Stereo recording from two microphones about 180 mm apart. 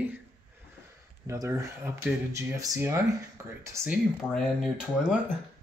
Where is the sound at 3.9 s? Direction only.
Centre (ahead or behind).